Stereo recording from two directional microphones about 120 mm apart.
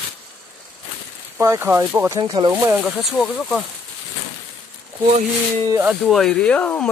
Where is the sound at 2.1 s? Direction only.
35° right (ahead or behind).